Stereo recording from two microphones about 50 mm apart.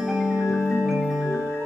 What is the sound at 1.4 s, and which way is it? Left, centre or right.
Music, left.